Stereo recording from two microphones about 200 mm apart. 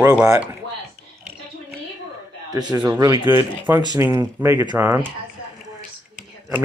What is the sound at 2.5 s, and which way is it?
Speech, 20° right (ahead or behind).